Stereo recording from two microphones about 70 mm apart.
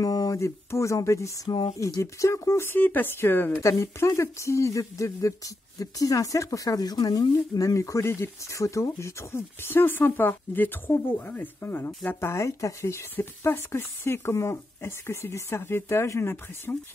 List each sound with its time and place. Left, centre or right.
0.0 s a sound: left
0.4 s speech: left
3.6 s speech: left
12.3 s speech: left
13.1 s speech: left